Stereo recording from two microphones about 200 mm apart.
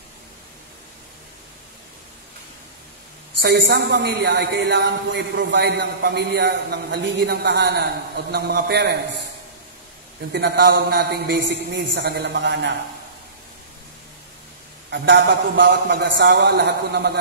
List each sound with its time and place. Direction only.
3.5 s a man's voice: 55° right (ahead or behind)
10.3 s a man's voice: 50° right (ahead or behind)
14.9 s a man's voice: 60° right (ahead or behind)